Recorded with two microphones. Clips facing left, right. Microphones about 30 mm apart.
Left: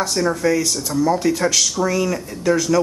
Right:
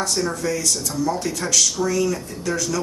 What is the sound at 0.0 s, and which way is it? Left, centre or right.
Speech, centre.